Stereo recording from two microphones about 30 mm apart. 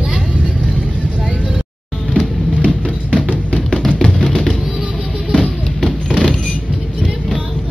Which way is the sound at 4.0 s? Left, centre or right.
Centre.